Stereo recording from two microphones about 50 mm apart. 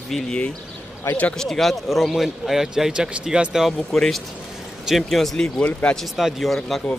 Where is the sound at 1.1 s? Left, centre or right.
Left.